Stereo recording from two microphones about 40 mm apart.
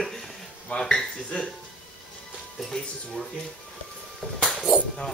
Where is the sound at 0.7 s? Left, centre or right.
Left.